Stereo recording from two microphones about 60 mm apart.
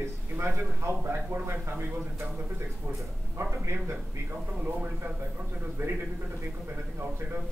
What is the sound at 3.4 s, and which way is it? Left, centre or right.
Speech, right.